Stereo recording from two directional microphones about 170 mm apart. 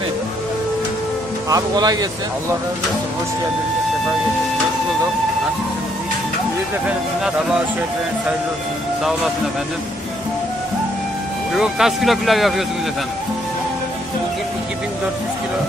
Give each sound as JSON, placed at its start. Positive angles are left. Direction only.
{"t": 1.5, "sound": "speech", "side_deg": -25}
{"t": 7.2, "sound": "speech", "side_deg": -5}
{"t": 11.5, "sound": "speech", "side_deg": 0}